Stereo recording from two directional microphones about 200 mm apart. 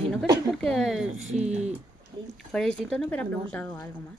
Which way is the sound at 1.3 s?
35° right (ahead or behind).